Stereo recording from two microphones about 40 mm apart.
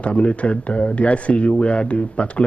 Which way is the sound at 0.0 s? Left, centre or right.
Left.